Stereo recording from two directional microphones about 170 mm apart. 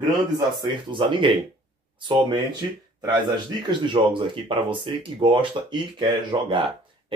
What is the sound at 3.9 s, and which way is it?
Speech, 30° right (ahead or behind).